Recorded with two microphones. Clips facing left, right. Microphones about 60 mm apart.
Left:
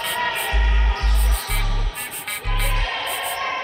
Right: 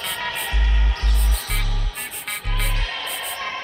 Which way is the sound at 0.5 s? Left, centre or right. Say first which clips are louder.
Left 4 dB; left.